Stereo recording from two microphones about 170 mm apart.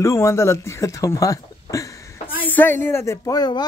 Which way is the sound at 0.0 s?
15° left (ahead or behind).